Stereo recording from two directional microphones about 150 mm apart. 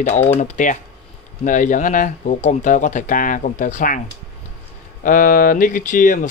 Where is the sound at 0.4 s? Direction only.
55° left (ahead or behind).